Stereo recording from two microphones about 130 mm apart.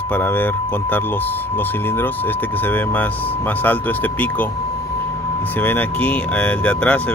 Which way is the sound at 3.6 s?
15° left (ahead or behind).